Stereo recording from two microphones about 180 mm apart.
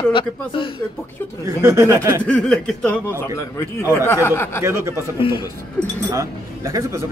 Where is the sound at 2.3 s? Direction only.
5° left (ahead or behind).